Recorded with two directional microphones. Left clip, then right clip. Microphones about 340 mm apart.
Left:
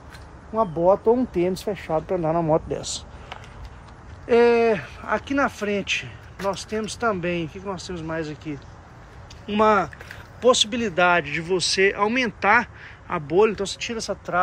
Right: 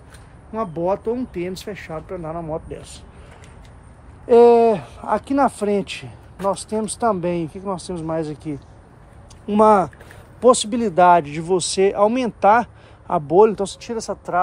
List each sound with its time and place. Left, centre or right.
0.6 s speech: centre; by 2.6 s left
4.3 s speech: centre